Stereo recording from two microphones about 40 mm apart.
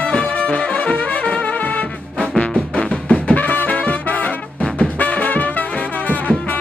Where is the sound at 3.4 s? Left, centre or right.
Left.